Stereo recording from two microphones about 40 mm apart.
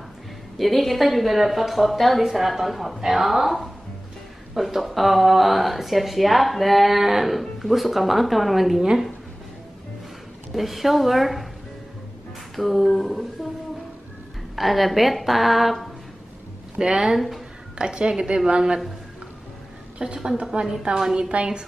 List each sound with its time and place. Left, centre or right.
0.6 s speech: centre
10.5 s speech: centre
12.5 s speech: centre
14.5 s speech: centre
16.7 s a woman's voice: centre
20.0 s a woman's voice: right